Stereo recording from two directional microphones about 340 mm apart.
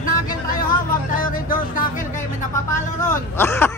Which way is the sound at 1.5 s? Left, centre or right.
Left.